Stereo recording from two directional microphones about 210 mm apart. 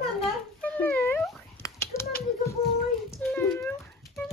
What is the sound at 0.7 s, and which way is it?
Cat, 10° left (ahead or behind).